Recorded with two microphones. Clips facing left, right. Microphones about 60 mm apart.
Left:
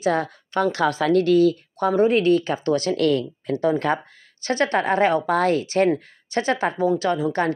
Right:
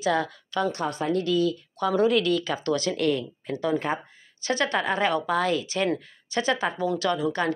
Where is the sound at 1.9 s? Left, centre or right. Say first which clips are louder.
Left 4 dB; left.